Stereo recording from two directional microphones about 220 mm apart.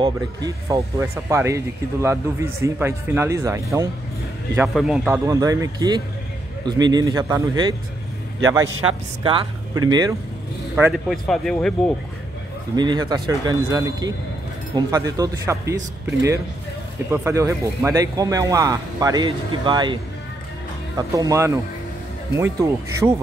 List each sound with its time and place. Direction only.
0.0 s speech: 15° right (ahead or behind)
4.7 s a man's voice: 5° right (ahead or behind)
9.2 s a man's voice: 20° right (ahead or behind)
10.8 s speech: centre (ahead or behind)
12.7 s speech: 20° right (ahead or behind)